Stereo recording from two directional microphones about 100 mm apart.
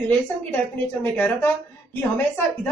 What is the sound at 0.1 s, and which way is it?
A woman's voice, 20° left (ahead or behind).